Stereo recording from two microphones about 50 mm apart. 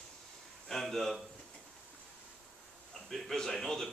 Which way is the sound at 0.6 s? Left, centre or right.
Centre.